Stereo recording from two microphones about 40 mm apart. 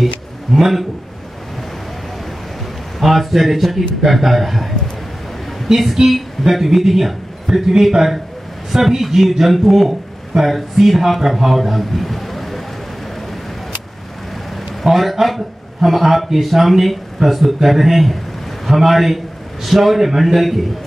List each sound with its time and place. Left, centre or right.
0.0 s a sound: centre
3.0 s a man's voice: centre
14.8 s a man's voice: centre